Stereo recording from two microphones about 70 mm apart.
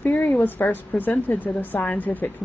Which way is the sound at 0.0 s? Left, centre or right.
Left.